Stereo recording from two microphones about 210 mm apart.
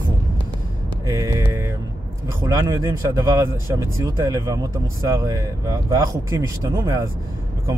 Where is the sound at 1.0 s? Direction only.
15° right (ahead or behind).